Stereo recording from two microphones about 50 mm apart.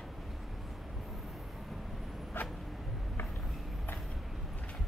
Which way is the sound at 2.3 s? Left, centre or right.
Left.